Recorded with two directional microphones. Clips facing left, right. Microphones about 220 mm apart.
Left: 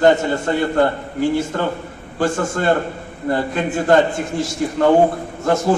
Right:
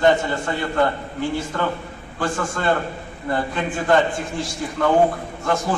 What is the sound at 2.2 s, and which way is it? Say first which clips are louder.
A man's voice: left 5 dB; 45° left (ahead or behind).